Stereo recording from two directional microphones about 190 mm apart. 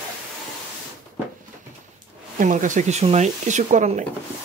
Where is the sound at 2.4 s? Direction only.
45° right (ahead or behind).